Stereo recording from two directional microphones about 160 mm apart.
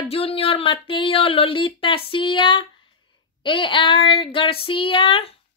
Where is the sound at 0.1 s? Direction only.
35° left (ahead or behind).